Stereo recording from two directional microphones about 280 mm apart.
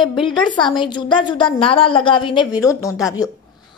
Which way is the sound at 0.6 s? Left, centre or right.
Centre.